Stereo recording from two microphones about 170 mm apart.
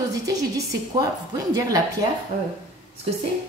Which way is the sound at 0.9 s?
20° right (ahead or behind).